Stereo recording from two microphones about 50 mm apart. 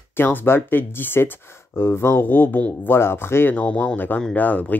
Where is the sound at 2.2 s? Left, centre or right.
Left.